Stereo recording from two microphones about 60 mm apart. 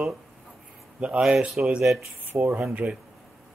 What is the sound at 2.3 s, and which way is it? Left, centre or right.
Speech, right.